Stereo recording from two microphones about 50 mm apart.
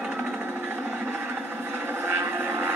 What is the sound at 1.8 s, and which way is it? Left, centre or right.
Vehicle, right.